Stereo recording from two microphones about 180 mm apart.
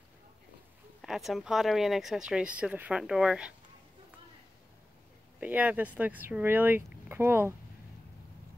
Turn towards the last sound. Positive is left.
turn(degrees=-15)  # may be behind; listen again after turning